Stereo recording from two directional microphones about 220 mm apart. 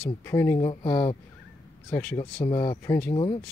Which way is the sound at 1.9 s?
10° left (ahead or behind).